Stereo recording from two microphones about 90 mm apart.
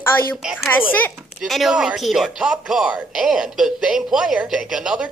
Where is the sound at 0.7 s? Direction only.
20° left (ahead or behind).